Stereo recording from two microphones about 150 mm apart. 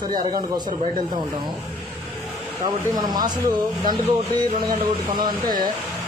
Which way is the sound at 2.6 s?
30° right (ahead or behind).